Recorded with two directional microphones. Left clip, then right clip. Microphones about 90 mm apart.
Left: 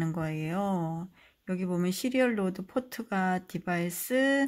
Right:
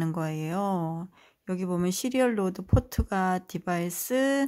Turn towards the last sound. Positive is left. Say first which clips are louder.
# right 1 dB
turn(degrees=-40)  # may be behind; listen again after turning